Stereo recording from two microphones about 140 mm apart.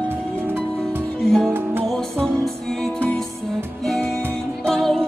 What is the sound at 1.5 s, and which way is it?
Music, 15° right (ahead or behind).